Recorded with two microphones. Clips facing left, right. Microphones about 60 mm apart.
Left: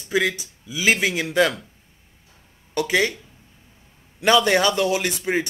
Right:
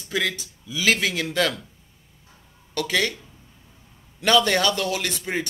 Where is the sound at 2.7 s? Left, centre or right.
Centre.